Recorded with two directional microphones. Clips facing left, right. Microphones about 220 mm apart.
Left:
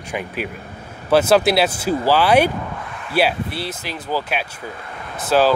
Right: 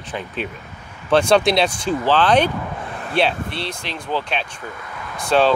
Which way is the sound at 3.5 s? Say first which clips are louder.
Left 1 dB; 5° left (ahead or behind).